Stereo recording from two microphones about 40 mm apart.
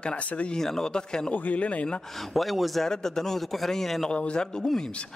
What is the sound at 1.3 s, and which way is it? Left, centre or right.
Speech, left.